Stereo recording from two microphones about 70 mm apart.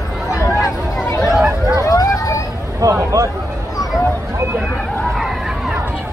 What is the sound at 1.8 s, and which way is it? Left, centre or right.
Vehicle, left.